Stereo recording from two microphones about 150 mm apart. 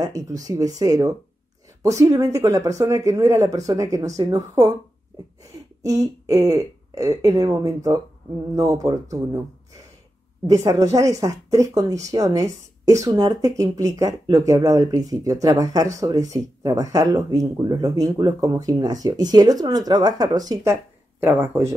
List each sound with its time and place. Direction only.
0.0 s speech: 25° right (ahead or behind)
5.8 s speech: 20° right (ahead or behind)
10.4 s speech: 20° right (ahead or behind)